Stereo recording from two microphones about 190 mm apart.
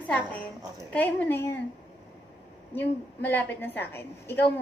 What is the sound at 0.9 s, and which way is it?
Speech, 10° left (ahead or behind).